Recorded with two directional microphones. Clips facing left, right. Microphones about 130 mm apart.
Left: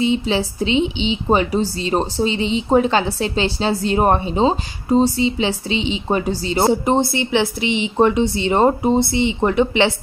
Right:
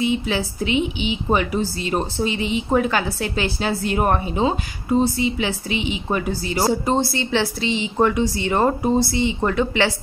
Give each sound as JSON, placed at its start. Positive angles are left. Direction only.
{"t": 0.0, "sound": "a woman's voice", "side_deg": 30}